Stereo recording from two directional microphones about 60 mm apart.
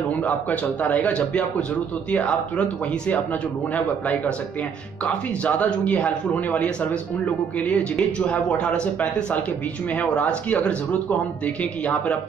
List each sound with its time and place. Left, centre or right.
0.3 s speech: left
9.9 s speech: left